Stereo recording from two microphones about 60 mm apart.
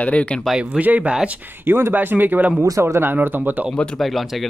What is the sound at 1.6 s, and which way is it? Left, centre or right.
Speech, right.